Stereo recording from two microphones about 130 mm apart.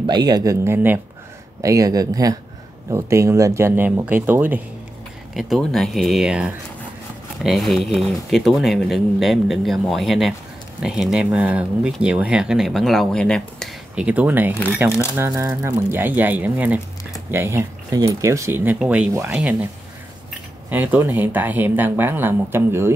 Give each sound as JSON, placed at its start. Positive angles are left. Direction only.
{"t": 0.0, "sound": "speech", "side_deg": -35}
{"t": 5.3, "sound": "speech", "side_deg": 0}
{"t": 13.9, "sound": "speech", "side_deg": -10}
{"t": 20.7, "sound": "speech", "side_deg": -15}